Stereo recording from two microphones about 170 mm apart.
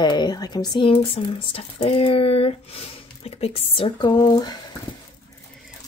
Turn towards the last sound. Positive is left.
turn(degrees=20)  # may be behind; listen again after turning